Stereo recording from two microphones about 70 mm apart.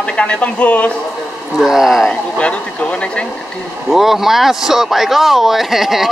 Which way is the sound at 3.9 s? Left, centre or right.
Centre.